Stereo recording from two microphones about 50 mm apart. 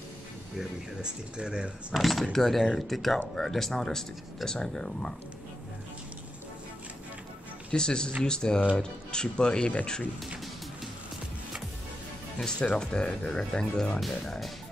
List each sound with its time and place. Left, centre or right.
1.0 s speech: centre
2.0 s speech: centre
7.7 s speech: centre
12.4 s speech: centre
13.9 s speech: centre